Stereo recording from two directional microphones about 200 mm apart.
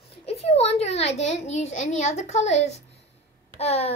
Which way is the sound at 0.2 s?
30° left (ahead or behind).